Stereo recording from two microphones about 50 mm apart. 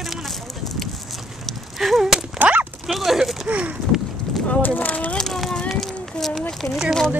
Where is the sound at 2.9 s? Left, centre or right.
Centre.